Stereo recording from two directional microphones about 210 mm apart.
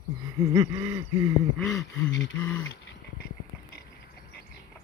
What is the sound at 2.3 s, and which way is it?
Speech, 5° left (ahead or behind).